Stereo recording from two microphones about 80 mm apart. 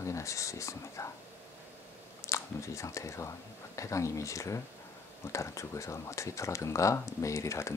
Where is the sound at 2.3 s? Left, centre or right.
Left.